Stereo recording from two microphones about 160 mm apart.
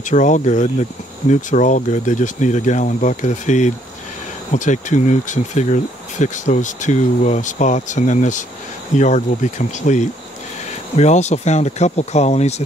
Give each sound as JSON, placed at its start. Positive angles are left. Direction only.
{"t": 0.1, "sound": "speech", "side_deg": 50}